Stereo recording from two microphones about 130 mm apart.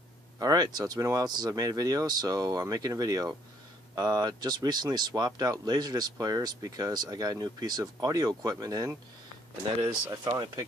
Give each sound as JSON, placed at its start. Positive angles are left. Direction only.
{"t": 0.4, "sound": "speech", "side_deg": -30}
{"t": 10.0, "sound": "speech", "side_deg": -30}